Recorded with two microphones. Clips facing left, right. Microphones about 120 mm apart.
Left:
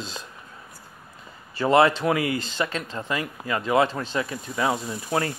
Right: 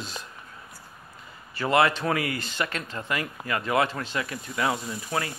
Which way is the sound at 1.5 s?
20° left (ahead or behind).